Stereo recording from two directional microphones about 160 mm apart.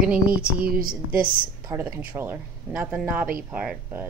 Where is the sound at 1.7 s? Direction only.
15° right (ahead or behind).